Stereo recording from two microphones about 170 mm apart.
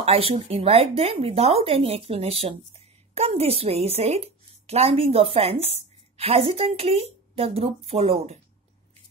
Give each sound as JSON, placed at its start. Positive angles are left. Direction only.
{"t": 0.0, "sound": "speech", "side_deg": -35}